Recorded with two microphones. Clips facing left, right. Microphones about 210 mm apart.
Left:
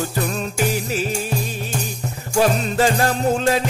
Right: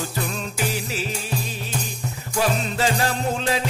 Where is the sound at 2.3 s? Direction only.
50° left (ahead or behind).